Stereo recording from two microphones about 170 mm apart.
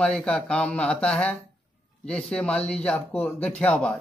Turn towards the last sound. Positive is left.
turn(degrees=5)  # may be behind; listen again after turning